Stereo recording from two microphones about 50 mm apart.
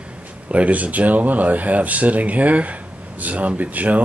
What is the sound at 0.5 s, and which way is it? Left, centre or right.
Speech, right.